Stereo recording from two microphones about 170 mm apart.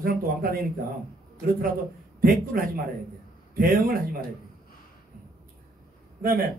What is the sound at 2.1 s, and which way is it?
Speech, 55° right (ahead or behind).